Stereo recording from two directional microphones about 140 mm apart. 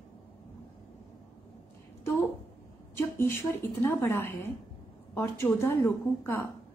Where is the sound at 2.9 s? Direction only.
15° left (ahead or behind).